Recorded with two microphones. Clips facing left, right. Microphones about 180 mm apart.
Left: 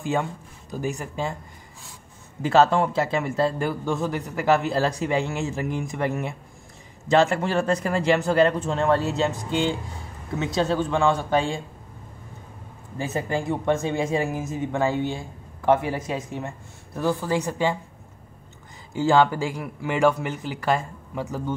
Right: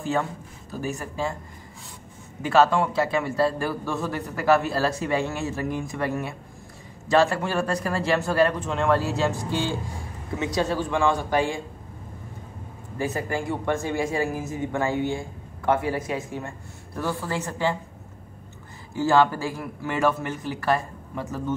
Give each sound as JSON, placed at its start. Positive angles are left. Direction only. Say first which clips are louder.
{"t": 0.0, "sound": "speech", "louder": "even", "side_deg": 15}
{"t": 2.4, "sound": "a man's voice", "louder": "left 1 dB", "side_deg": 25}
{"t": 12.9, "sound": "a man's voice", "louder": "left 1 dB", "side_deg": 25}
{"t": 18.9, "sound": "speech", "louder": "left 1 dB", "side_deg": 15}